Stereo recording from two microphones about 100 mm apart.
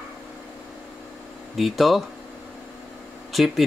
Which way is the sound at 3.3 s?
Centre (ahead or behind).